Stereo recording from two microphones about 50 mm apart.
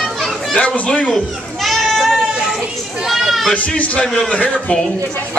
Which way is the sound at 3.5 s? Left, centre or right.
Left.